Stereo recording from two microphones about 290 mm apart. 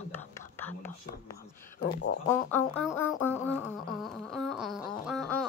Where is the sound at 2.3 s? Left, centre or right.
Centre.